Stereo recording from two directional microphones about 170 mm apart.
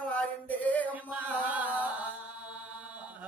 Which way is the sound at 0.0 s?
10° left (ahead or behind).